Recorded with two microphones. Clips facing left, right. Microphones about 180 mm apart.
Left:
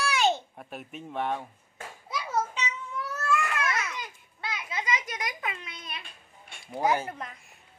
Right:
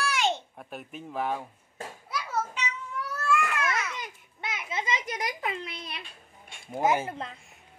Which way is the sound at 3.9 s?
20° right (ahead or behind).